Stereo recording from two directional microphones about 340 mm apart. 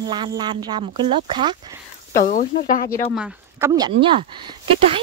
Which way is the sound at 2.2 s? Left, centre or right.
Left.